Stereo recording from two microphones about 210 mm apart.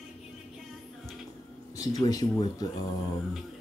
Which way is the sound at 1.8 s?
15° left (ahead or behind).